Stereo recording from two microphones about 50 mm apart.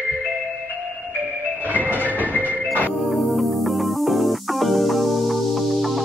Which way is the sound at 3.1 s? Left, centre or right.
Centre.